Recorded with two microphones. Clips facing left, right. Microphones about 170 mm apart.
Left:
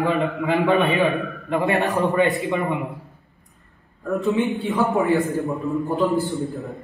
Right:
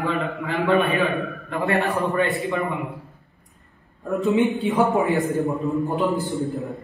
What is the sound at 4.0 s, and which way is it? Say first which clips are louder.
A man's voice: right 1 dB; 20° right (ahead or behind).